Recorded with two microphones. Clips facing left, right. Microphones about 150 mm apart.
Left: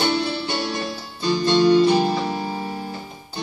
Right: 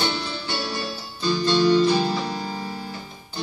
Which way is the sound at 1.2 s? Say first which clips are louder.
Left 3 dB; 20° left (ahead or behind).